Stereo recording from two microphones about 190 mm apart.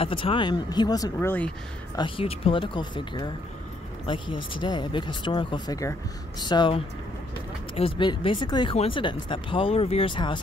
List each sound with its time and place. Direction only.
0.0 s speech: 25° left (ahead or behind); by 1.5 s 10° left (ahead or behind)
2.0 s speech: 25° left (ahead or behind)